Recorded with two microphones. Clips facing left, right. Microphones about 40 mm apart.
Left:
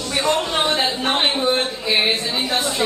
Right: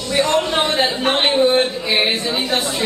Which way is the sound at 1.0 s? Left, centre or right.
Centre.